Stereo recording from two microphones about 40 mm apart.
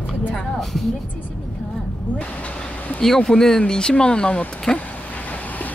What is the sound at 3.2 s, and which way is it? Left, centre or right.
Speech, centre.